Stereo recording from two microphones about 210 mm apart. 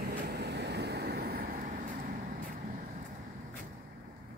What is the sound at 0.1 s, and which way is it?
Vehicle, 50° right (ahead or behind).